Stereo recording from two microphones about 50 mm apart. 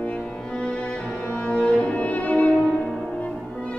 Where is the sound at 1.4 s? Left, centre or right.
Left.